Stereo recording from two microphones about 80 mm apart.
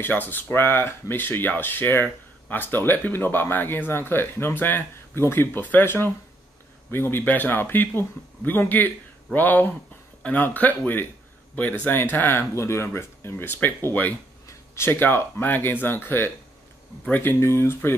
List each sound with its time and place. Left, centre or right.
0.0 s speech: left
11.8 s speech: left